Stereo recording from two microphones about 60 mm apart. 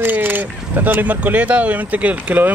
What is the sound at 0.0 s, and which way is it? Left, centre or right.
Speech, right.